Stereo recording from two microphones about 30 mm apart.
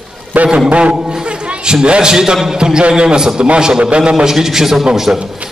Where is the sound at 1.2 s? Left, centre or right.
Right.